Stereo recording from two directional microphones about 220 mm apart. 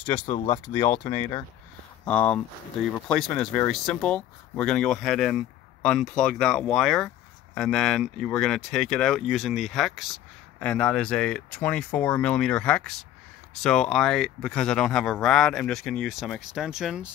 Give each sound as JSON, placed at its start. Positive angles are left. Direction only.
{"t": 0.0, "sound": "speech", "side_deg": 25}
{"t": 2.0, "sound": "speech", "side_deg": 5}